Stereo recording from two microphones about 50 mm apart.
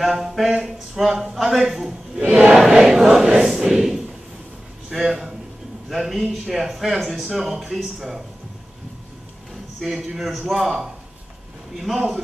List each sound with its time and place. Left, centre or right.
0.0 s speech: centre
2.3 s choir: centre
4.8 s a man's voice: centre
10.0 s choir: centre
11.8 s speech: centre